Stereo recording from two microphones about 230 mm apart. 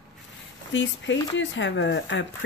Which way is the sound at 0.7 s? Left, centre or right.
Left.